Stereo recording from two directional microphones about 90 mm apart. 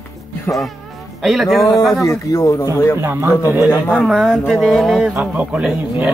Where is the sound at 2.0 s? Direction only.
35° left (ahead or behind).